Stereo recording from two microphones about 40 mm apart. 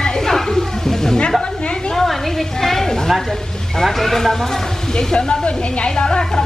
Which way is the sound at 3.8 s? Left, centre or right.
Centre.